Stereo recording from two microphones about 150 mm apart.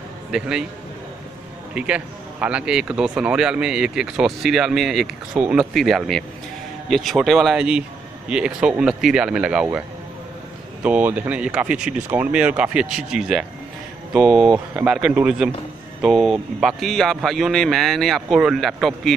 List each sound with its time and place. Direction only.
0.3 s a man's voice: 5° right (ahead or behind)
1.7 s a man's voice: 5° right (ahead or behind)
10.8 s a man's voice: 10° right (ahead or behind)